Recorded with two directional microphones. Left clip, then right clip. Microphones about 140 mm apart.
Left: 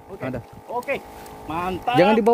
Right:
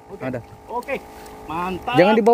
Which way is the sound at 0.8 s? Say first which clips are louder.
Even; 45° left (ahead or behind).